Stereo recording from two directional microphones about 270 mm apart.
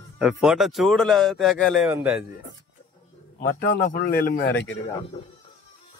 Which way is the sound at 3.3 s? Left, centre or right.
Left.